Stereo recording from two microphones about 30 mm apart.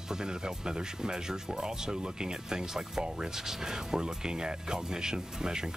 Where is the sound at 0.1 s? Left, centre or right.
Right.